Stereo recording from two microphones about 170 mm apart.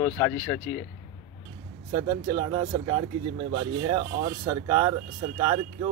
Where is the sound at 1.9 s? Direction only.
30° right (ahead or behind).